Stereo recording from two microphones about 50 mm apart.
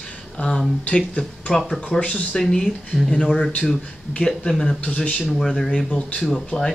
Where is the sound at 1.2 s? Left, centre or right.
Centre.